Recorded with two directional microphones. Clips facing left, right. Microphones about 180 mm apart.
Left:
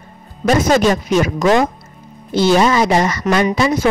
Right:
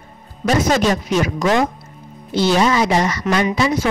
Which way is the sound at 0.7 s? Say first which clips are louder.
Left 3 dB; 50° left (ahead or behind).